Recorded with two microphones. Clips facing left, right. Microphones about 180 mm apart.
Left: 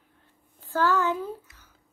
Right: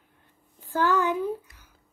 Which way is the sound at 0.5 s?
15° right (ahead or behind).